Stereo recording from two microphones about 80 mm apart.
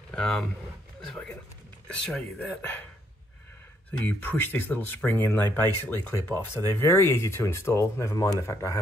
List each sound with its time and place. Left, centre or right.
0.1 s speech: centre
1.9 s speech: centre
4.0 s speech: left